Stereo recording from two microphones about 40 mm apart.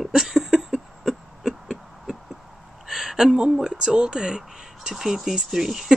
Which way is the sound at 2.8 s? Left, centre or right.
Centre.